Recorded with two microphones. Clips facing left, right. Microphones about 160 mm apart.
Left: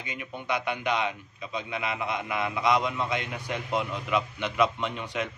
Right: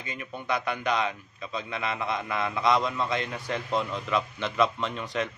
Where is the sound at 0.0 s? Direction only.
15° left (ahead or behind).